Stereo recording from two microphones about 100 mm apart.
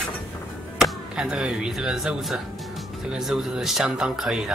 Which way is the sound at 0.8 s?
5° right (ahead or behind).